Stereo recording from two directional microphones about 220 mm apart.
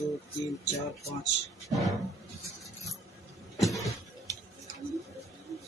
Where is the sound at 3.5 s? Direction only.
Centre (ahead or behind).